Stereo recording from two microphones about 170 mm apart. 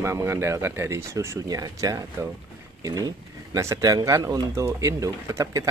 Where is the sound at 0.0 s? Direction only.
15° right (ahead or behind).